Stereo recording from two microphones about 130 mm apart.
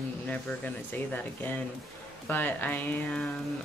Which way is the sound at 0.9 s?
15° left (ahead or behind).